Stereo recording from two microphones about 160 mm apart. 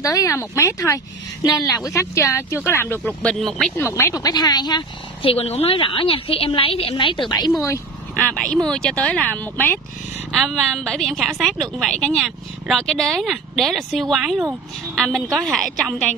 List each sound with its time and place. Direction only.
0.0 s speech: 20° left (ahead or behind)
1.4 s speech: centre (ahead or behind)
1.9 s speech: 20° left (ahead or behind); by 3.7 s centre (ahead or behind)
3.7 s a woman's voice: 15° left (ahead or behind)
7.6 s speech: 10° left (ahead or behind)
10.3 s speech: centre (ahead or behind)